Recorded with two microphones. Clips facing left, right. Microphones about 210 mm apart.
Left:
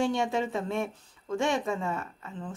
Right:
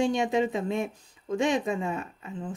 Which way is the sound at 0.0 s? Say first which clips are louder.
Right 3 dB; 15° right (ahead or behind).